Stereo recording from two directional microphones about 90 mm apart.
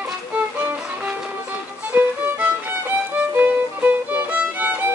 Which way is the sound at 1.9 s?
15° right (ahead or behind).